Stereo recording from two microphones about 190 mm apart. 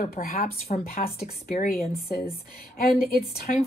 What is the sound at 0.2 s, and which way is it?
A woman's voice, 45° left (ahead or behind).